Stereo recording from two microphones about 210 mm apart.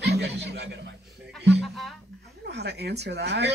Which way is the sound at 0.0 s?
50° right (ahead or behind).